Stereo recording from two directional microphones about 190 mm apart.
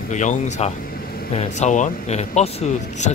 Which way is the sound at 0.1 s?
40° left (ahead or behind).